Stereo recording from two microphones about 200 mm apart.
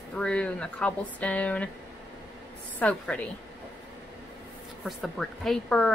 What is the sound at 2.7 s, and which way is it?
Speech, 5° left (ahead or behind).